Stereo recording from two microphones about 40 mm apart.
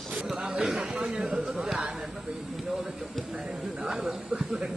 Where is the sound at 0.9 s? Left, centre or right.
Centre.